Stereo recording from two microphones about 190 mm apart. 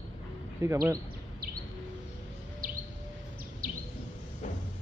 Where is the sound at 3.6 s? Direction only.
45° right (ahead or behind).